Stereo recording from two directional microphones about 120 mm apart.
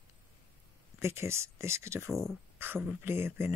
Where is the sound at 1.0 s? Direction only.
20° right (ahead or behind).